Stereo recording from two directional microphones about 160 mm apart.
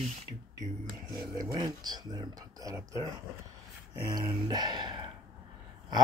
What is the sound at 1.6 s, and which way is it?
Speech, 25° right (ahead or behind).